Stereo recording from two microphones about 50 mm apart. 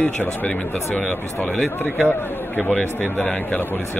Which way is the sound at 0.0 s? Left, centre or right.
Left.